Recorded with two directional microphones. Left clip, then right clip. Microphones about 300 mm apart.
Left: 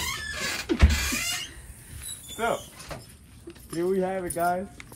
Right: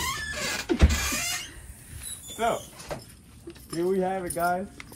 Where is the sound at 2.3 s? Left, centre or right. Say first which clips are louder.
Right 1 dB; centre.